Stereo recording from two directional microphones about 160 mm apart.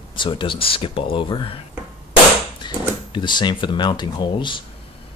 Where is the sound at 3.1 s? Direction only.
30° left (ahead or behind).